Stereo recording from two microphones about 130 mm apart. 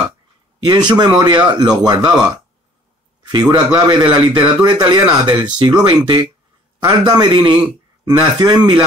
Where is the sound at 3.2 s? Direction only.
35° right (ahead or behind).